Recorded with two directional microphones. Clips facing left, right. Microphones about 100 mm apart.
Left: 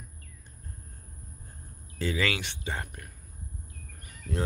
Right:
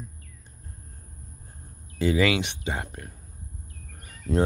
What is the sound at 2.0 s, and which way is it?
Speech, 15° right (ahead or behind).